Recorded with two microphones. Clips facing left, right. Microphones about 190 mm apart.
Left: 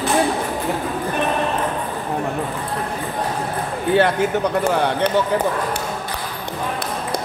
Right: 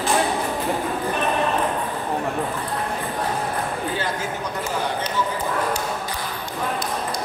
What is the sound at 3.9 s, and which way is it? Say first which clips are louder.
Speech: left 10 dB; 65° left (ahead or behind).